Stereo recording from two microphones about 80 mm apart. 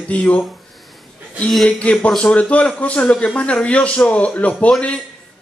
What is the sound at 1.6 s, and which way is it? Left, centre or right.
A man's voice, centre.